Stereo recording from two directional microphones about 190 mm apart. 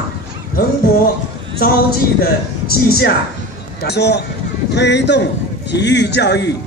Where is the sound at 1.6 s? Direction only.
55° left (ahead or behind).